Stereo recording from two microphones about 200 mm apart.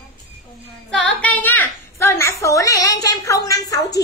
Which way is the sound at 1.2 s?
10° left (ahead or behind).